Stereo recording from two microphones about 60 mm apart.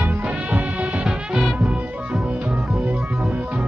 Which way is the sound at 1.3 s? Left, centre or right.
Centre.